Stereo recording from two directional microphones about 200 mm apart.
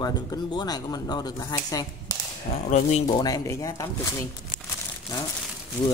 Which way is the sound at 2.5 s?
30° left (ahead or behind).